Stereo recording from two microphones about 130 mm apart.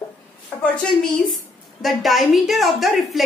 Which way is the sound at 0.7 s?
5° left (ahead or behind).